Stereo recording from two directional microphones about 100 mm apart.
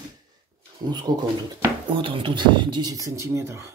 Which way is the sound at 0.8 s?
50° right (ahead or behind).